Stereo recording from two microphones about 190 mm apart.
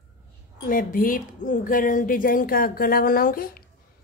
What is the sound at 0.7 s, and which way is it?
Speech, 45° left (ahead or behind).